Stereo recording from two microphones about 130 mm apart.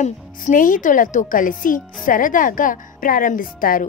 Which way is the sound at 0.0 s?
85° left.